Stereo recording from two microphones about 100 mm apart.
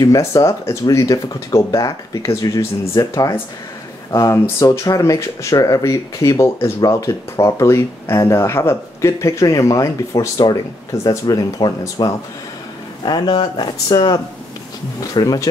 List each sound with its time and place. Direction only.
0.0 s speech: 35° left (ahead or behind)
13.0 s speech: 50° left (ahead or behind)